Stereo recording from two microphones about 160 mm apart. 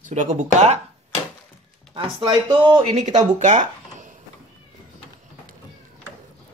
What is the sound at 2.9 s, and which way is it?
Speech, 45° right (ahead or behind).